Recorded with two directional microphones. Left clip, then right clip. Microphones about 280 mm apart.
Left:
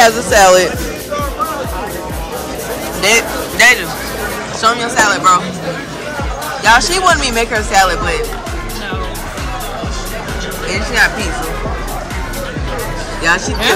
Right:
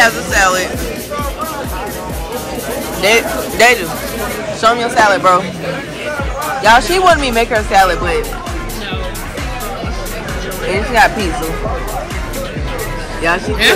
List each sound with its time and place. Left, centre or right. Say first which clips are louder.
0.0 s speech: left 3 dB; left
3.0 s speech: even; centre
6.6 s speech: right 1 dB; centre
10.7 s speech: right 2 dB; centre
13.2 s speech: right 1 dB; centre